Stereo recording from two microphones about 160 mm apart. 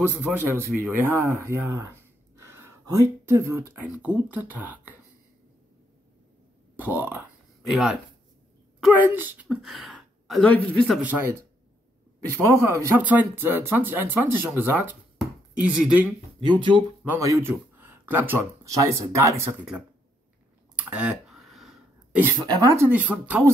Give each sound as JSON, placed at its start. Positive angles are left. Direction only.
{"t": 0.2, "sound": "speech", "side_deg": -15}
{"t": 6.8, "sound": "speech", "side_deg": -10}
{"t": 9.5, "sound": "a woman's voice", "side_deg": 0}
{"t": 11.0, "sound": "speech", "side_deg": -10}
{"t": 12.4, "sound": "speech", "side_deg": -15}
{"t": 15.1, "sound": "a sound", "side_deg": -5}
{"t": 16.3, "sound": "speech", "side_deg": -30}
{"t": 17.2, "sound": "speech", "side_deg": -20}
{"t": 20.7, "sound": "a sound", "side_deg": -5}
{"t": 22.6, "sound": "speech", "side_deg": -20}